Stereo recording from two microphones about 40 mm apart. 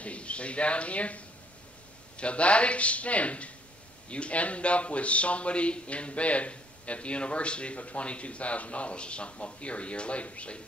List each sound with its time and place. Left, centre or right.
0.0 s a man's voice: left